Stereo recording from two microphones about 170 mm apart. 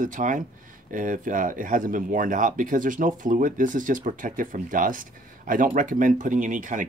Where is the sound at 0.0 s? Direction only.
50° right (ahead or behind).